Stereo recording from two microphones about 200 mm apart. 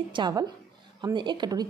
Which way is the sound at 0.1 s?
20° right (ahead or behind).